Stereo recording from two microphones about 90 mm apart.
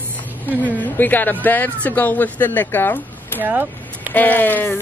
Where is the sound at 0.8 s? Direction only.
20° left (ahead or behind).